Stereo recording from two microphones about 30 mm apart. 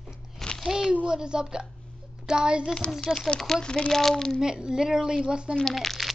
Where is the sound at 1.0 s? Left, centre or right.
Right.